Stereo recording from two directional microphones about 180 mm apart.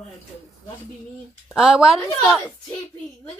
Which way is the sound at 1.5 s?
5° right (ahead or behind).